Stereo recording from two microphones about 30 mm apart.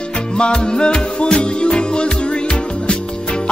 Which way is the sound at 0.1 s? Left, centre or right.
Left.